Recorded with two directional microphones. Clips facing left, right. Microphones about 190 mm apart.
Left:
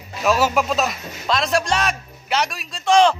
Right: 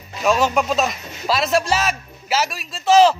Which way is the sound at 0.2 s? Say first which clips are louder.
Right 1 dB; centre (ahead or behind).